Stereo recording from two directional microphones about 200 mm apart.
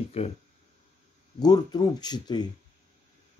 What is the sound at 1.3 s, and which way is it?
Speech, 20° left (ahead or behind).